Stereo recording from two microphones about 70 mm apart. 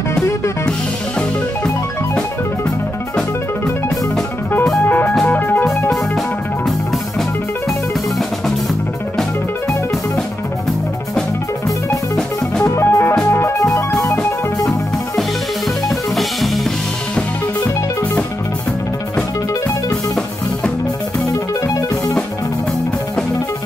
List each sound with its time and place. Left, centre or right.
4.8 s music: left
12.6 s music: left
15.9 s music: centre
21.3 s music: left